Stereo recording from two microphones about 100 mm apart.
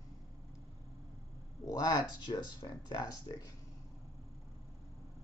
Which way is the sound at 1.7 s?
40° left (ahead or behind).